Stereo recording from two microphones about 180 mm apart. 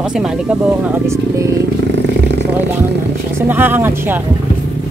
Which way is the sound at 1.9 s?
75° right (ahead or behind).